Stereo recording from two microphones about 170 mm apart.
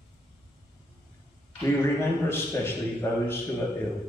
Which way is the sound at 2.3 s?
15° left (ahead or behind).